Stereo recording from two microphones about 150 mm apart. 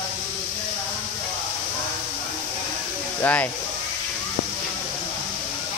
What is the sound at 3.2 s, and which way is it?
Speech, 10° left (ahead or behind).